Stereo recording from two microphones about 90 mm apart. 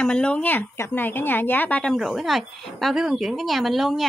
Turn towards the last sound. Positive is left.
turn(degrees=0)  # may be behind; listen again after turning